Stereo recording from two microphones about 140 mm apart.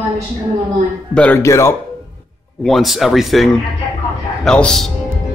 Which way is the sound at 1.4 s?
20° left (ahead or behind).